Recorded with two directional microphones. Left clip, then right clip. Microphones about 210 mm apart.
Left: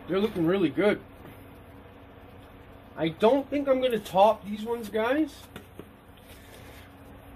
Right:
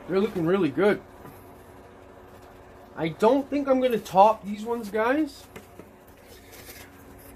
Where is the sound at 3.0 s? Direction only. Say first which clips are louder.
Right 1 dB; 30° right (ahead or behind).